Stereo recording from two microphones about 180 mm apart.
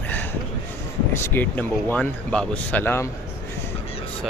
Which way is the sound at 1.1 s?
10° left (ahead or behind).